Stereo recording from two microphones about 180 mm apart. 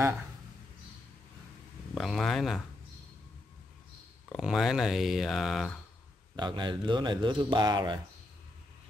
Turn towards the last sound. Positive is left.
turn(degrees=-25)  # may be behind; listen again after turning